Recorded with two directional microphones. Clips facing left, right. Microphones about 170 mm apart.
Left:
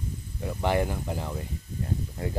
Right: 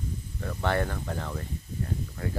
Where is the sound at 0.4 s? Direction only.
15° left (ahead or behind).